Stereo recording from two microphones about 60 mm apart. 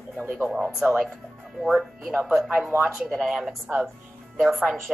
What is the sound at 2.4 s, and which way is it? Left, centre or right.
A woman's voice, centre.